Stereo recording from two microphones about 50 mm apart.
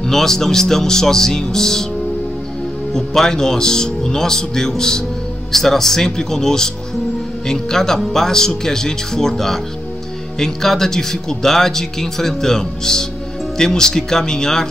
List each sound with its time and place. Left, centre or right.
0.0 s speech: centre
2.9 s speech: centre